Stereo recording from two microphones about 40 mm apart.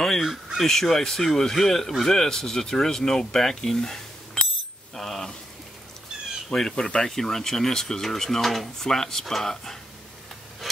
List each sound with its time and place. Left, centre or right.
0.0 s crow: centre
0.6 s speech: centre
4.9 s cutlery: centre
6.5 s speech: centre
7.1 s speech: centre
10.6 s a sound: centre